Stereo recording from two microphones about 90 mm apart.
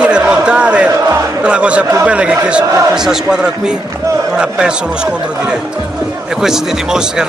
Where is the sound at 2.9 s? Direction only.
5° right (ahead or behind).